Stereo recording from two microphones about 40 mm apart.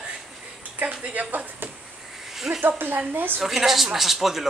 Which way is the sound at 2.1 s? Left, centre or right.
Centre.